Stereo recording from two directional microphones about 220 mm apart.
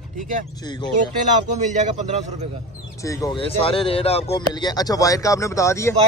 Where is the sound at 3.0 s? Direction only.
20° left (ahead or behind).